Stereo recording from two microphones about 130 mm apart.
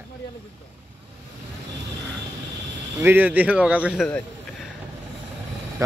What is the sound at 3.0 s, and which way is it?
Speech, 15° right (ahead or behind).